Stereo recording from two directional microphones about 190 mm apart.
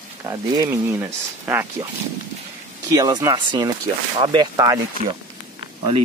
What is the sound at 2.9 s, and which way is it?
Speech, 20° right (ahead or behind).